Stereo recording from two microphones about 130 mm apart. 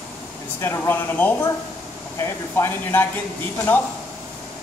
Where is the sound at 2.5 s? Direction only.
15° left (ahead or behind).